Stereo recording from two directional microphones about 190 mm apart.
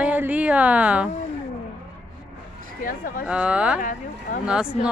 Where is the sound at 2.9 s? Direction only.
45° left (ahead or behind).